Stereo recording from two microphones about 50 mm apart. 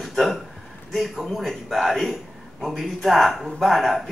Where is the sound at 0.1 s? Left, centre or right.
Centre.